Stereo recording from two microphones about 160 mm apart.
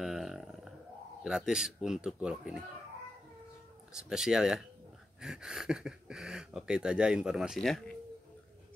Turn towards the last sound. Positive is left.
turn(degrees=0)  # may be behind; listen again after turning